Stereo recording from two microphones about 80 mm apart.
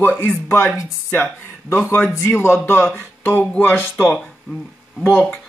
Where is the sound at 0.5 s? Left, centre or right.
Left.